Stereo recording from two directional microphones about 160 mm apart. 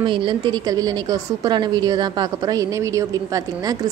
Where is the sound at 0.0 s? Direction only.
30° right (ahead or behind).